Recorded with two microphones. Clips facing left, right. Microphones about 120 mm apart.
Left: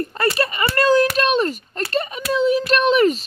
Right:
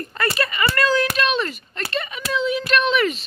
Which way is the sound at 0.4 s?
35° left (ahead or behind).